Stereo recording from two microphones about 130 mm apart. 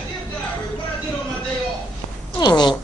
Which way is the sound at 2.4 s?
35° left (ahead or behind).